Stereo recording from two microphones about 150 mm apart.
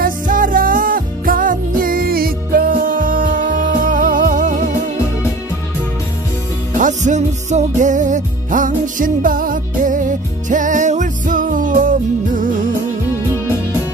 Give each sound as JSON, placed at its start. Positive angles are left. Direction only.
{"t": 0.0, "sound": "music", "side_deg": -65}
{"t": 6.8, "sound": "music", "side_deg": -55}